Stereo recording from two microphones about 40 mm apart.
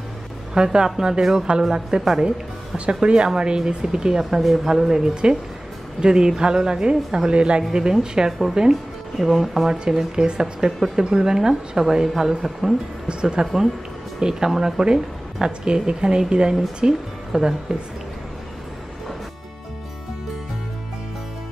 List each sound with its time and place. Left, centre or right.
0.6 s a woman's voice: centre
2.8 s a woman's voice: right
8.3 s a woman's voice: centre
9.5 s a woman's voice: centre
10.4 s a woman's voice: centre
13.2 s a woman's voice: right